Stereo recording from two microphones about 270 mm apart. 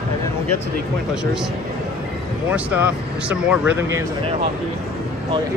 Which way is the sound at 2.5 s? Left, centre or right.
Centre.